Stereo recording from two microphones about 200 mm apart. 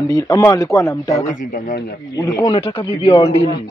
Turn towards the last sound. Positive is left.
turn(degrees=25)  # may be behind; listen again after turning